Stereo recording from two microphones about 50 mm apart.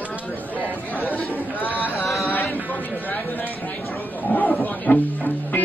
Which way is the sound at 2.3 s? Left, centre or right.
Left.